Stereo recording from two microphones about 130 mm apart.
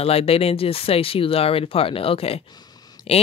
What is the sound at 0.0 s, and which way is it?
Speech, 50° left (ahead or behind).